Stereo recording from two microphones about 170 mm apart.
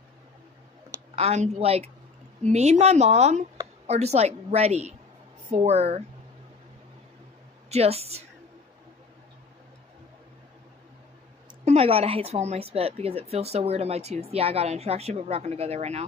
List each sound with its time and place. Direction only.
1.1 s a woman's voice: 40° right (ahead or behind)
7.7 s a woman's voice: 35° right (ahead or behind)
11.6 s a woman's voice: 35° right (ahead or behind)